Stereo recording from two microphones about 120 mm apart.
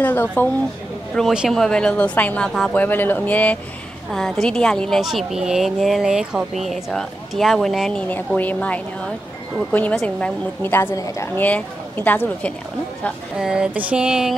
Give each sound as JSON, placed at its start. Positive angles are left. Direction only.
{"t": 0.0, "sound": "a woman's voice", "side_deg": 15}
{"t": 1.1, "sound": "a woman's voice", "side_deg": -5}
{"t": 8.4, "sound": "a woman's voice", "side_deg": 10}
{"t": 11.3, "sound": "a woman's voice", "side_deg": 15}
{"t": 13.4, "sound": "a woman's voice", "side_deg": -5}